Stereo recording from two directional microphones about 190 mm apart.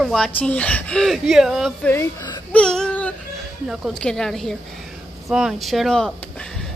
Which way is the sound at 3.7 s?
Centre (ahead or behind).